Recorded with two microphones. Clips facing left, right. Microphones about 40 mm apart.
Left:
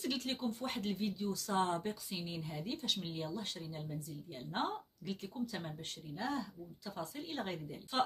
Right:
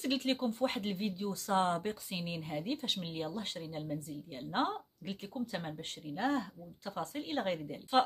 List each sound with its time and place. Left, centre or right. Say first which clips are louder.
0.0 s speech: right 5 dB; right